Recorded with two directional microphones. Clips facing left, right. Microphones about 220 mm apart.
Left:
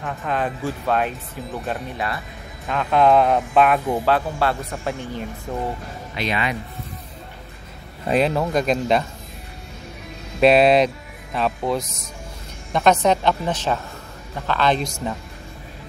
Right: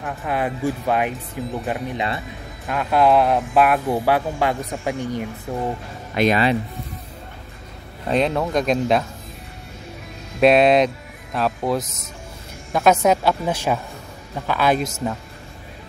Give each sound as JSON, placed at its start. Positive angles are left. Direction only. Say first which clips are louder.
{"t": 0.0, "sound": "speech", "louder": "right 1 dB", "side_deg": -5}
{"t": 2.6, "sound": "speech", "louder": "even", "side_deg": 0}
{"t": 6.1, "sound": "speech", "louder": "right 8 dB", "side_deg": -50}
{"t": 8.1, "sound": "speech", "louder": "even", "side_deg": 5}
{"t": 10.4, "sound": "speech", "louder": "even", "side_deg": 0}